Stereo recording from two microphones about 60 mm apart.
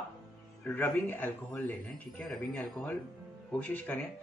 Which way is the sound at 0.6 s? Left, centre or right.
Left.